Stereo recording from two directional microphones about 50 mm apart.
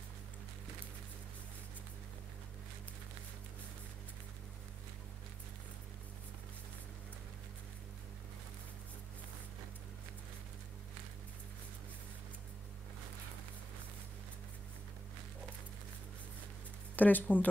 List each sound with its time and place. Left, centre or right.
16.9 s speech: left